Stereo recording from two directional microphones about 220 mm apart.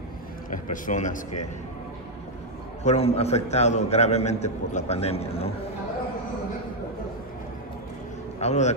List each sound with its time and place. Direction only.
0.5 s speech: 35° left (ahead or behind)
2.8 s a man's voice: 30° left (ahead or behind)
8.4 s a man's voice: 30° left (ahead or behind)